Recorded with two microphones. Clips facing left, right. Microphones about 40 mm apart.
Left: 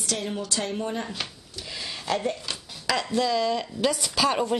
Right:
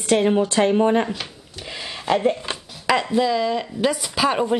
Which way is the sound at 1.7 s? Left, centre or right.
Right.